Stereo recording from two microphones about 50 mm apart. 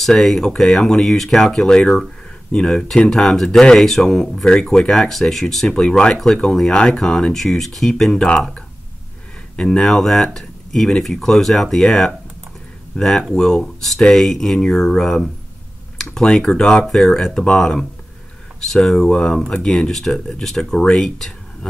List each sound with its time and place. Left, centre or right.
0.0 s speech: centre
5.7 s speech: centre
6.1 s speech: centre
9.6 s speech: centre